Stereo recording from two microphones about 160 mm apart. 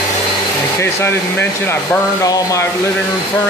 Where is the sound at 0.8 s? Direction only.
15° left (ahead or behind).